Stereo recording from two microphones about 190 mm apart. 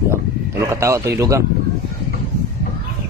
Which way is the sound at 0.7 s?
15° right (ahead or behind).